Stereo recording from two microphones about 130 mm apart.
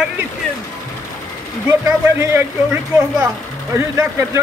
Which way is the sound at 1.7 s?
20° right (ahead or behind).